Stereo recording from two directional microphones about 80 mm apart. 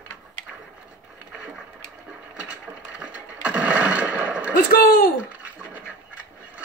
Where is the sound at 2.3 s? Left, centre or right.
Centre.